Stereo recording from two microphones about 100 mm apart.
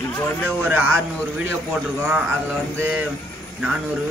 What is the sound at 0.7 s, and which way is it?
Speech, 20° right (ahead or behind).